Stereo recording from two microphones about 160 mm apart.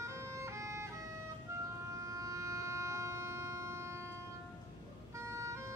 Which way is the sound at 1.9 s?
20° right (ahead or behind).